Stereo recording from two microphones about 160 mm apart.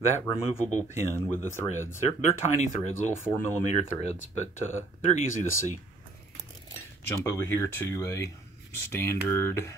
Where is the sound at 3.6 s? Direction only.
45° left (ahead or behind).